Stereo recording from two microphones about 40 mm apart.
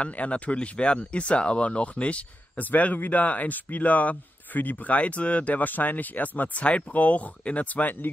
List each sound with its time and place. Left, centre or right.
0.0 s speech: left
2.6 s speech: left